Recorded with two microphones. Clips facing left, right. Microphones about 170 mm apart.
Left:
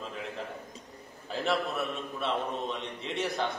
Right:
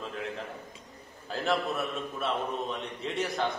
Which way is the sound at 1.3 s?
Centre (ahead or behind).